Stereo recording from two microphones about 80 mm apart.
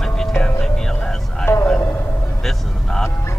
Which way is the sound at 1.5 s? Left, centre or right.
Left.